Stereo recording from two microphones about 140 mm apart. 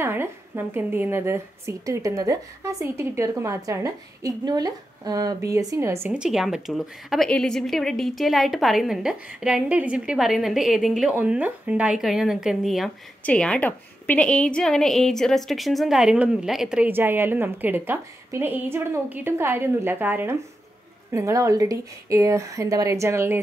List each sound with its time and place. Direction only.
0.0 s a woman's voice: 15° right (ahead or behind)
6.1 s a woman's voice: 5° right (ahead or behind)